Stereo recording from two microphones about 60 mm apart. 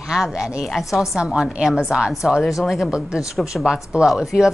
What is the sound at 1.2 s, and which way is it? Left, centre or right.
A woman's voice, centre.